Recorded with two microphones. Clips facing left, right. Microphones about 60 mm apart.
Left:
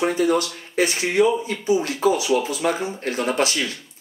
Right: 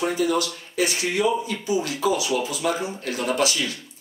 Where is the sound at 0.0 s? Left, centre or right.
Left.